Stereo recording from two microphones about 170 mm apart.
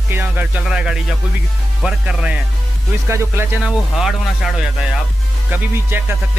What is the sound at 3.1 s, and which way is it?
Music, 15° right (ahead or behind).